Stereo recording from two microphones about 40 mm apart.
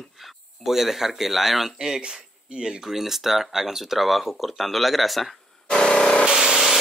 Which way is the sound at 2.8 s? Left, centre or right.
Centre.